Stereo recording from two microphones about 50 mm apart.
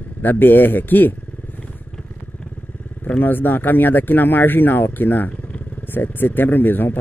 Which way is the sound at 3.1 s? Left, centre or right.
Left.